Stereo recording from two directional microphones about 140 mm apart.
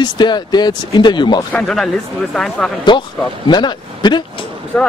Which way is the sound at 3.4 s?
30° left (ahead or behind).